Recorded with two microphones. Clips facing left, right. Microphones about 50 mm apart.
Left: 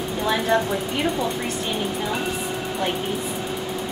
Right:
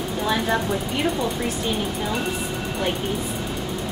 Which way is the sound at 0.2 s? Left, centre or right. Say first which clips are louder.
Left 2 dB; centre.